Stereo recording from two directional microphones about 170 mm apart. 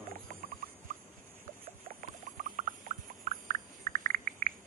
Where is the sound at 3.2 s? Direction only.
50° right (ahead or behind).